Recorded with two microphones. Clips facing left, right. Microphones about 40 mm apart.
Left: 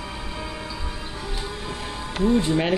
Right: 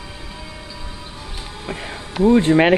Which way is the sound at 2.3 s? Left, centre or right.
Right.